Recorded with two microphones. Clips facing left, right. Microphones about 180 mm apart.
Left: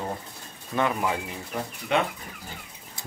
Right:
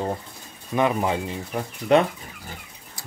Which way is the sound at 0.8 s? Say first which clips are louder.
Right 4 dB; 25° right (ahead or behind).